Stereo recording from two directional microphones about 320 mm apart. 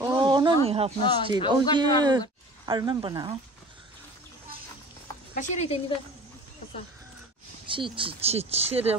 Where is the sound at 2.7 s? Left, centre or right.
Centre.